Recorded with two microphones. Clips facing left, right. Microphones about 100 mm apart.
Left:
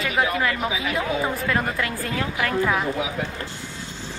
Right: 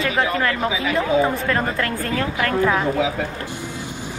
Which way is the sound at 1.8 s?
50° right (ahead or behind).